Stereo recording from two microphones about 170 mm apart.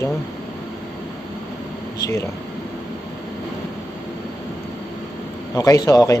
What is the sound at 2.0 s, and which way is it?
Speech, 15° left (ahead or behind).